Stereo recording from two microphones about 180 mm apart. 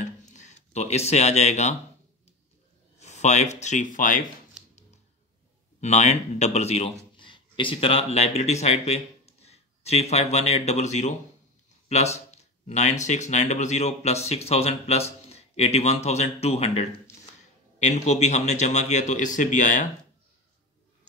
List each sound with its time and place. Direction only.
0.2 s speech: 40° left (ahead or behind)
3.0 s speech: 40° left (ahead or behind)
5.8 s speech: 40° left (ahead or behind)